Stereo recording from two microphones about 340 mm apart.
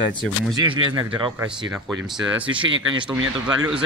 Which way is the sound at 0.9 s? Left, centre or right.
Centre.